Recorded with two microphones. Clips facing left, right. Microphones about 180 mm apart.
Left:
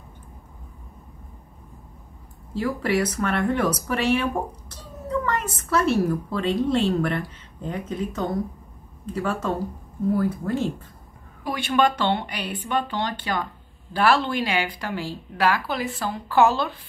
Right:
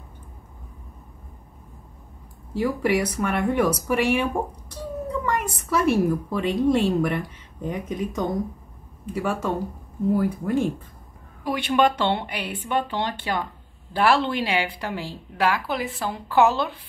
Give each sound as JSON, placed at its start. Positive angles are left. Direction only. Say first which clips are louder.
{"t": 2.5, "sound": "a woman's voice", "louder": "right 1 dB", "side_deg": -15}
{"t": 11.6, "sound": "speech", "louder": "even", "side_deg": -25}